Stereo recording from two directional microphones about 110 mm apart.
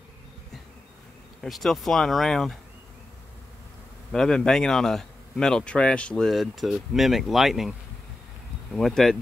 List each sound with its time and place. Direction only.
1.4 s speech: 5° left (ahead or behind)
4.1 s speech: 5° left (ahead or behind)
8.7 s speech: 5° left (ahead or behind)